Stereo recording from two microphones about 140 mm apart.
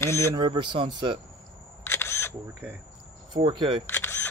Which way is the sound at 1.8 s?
15° left (ahead or behind).